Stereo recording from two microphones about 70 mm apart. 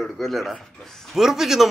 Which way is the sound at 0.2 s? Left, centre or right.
Centre.